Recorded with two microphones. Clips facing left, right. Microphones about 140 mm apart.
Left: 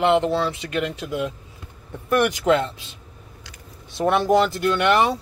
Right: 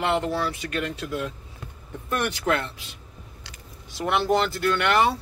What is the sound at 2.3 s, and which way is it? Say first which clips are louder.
Speech: left 6 dB; 20° left (ahead or behind).